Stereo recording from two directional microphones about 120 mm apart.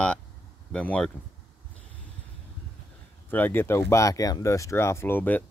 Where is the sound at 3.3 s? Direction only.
15° left (ahead or behind).